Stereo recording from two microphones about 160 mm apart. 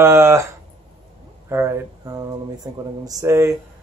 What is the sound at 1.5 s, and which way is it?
Speech, 20° right (ahead or behind).